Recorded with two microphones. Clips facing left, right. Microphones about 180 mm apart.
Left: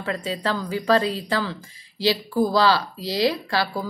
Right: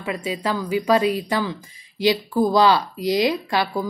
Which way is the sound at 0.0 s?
15° right (ahead or behind).